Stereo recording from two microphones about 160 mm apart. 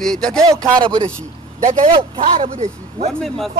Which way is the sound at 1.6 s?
50° right (ahead or behind).